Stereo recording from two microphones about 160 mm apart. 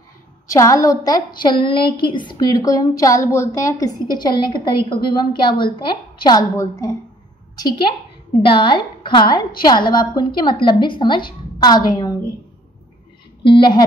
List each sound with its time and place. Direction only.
0.5 s a woman's voice: 20° left (ahead or behind)
13.4 s a woman's voice: 30° left (ahead or behind)